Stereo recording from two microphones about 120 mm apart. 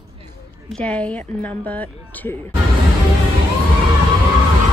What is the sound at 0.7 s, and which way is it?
A woman's voice, 10° left (ahead or behind).